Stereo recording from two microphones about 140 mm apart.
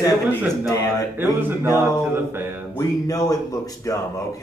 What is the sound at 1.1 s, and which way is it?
Music, 15° right (ahead or behind).